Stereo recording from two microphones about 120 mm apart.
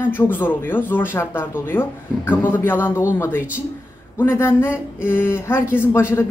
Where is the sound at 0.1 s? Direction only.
15° left (ahead or behind).